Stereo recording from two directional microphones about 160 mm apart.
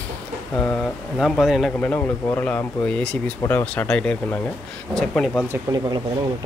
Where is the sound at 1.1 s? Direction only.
Centre (ahead or behind).